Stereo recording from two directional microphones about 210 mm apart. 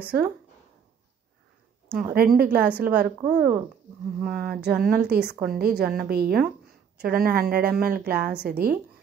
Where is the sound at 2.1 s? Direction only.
45° right (ahead or behind).